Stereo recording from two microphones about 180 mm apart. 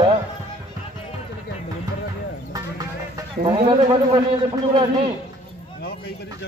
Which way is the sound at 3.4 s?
30° right (ahead or behind).